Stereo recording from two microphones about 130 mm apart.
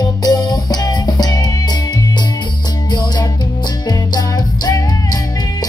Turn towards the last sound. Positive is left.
turn(degrees=30)  # may be behind; listen again after turning